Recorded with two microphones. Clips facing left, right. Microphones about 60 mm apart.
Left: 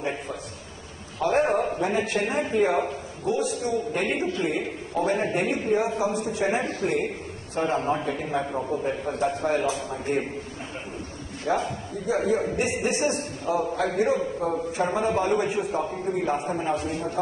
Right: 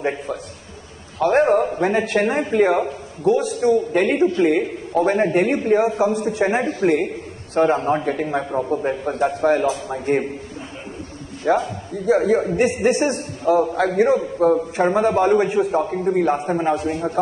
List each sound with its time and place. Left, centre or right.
1.2 s a man's voice: right
11.5 s a man's voice: right
13.7 s a man's voice: right